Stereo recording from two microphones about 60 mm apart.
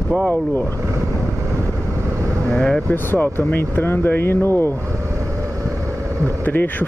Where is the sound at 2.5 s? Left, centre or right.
Centre.